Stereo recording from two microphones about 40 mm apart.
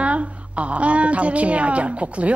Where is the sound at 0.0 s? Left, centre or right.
Right.